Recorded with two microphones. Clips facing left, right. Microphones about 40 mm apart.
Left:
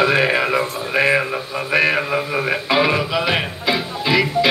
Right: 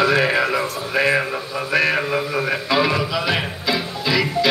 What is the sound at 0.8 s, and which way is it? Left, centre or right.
Speech, centre.